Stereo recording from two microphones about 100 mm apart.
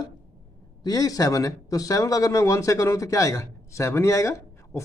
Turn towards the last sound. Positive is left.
turn(degrees=30)  # may be behind; listen again after turning